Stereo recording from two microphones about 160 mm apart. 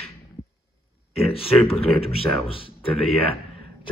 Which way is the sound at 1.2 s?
35° left (ahead or behind).